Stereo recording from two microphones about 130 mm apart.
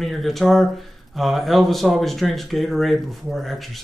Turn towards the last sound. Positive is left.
turn(degrees=0)  # may be behind; listen again after turning